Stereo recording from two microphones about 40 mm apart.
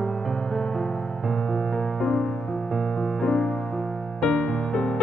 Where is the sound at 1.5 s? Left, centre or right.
Centre.